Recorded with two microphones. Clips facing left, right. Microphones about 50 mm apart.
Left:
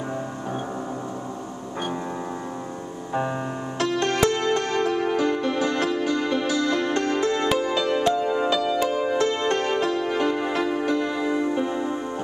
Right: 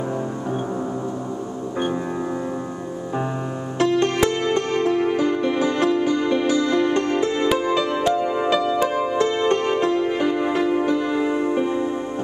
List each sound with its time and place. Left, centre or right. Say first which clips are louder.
3.7 s music: right 5 dB; centre